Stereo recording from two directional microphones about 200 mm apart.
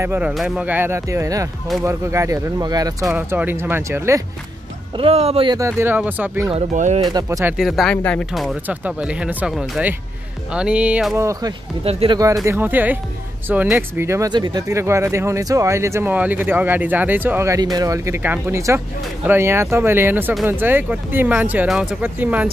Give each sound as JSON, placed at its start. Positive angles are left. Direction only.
{"t": 0.0, "sound": "speech", "side_deg": -10}
{"t": 4.9, "sound": "speech", "side_deg": -30}
{"t": 6.5, "sound": "speech", "side_deg": -35}
{"t": 7.1, "sound": "speech", "side_deg": -15}
{"t": 7.5, "sound": "speech", "side_deg": 0}
{"t": 11.1, "sound": "speech", "side_deg": -15}
{"t": 11.8, "sound": "speech", "side_deg": -30}
{"t": 12.4, "sound": "speech", "side_deg": -10}